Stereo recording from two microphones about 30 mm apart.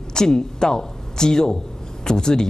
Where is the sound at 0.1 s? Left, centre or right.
Left.